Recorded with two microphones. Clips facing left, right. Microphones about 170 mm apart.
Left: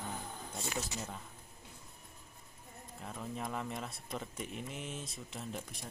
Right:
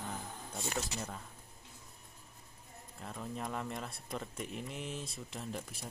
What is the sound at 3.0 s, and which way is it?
Speech, centre (ahead or behind).